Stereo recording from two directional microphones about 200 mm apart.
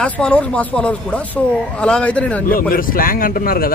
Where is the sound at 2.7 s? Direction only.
45° left (ahead or behind).